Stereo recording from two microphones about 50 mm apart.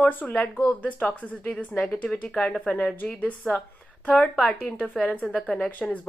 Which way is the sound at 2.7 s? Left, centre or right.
Left.